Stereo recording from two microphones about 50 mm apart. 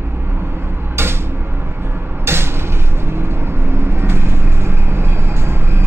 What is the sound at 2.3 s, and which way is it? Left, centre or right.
Vehicle, right.